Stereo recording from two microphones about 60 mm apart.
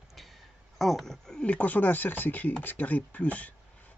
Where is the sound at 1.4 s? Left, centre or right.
Left.